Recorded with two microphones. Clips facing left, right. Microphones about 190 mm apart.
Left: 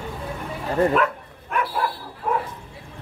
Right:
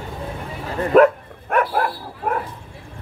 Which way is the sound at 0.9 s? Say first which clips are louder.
Right 9 dB; 50° right (ahead or behind).